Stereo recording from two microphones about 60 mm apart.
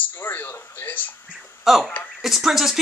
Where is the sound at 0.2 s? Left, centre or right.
Left.